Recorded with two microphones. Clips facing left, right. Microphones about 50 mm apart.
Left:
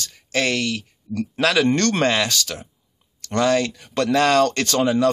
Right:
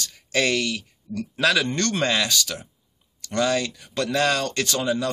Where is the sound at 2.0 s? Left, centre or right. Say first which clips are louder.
Left 3 dB; left.